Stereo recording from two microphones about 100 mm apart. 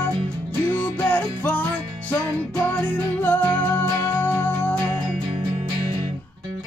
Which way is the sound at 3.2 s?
15° left (ahead or behind).